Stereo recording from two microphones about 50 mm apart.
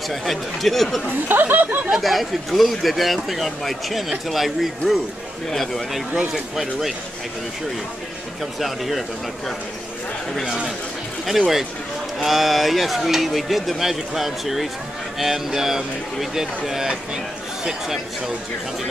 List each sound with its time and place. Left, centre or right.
0.1 s speech: centre
1.3 s speech: right
1.9 s speech: centre
6.3 s speech: centre
8.5 s speech: centre
10.4 s speech: centre
11.2 s speech: centre